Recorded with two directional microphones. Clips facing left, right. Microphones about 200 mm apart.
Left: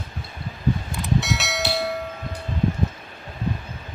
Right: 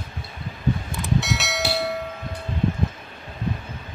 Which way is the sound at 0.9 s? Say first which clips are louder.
Left 1 dB; centre (ahead or behind).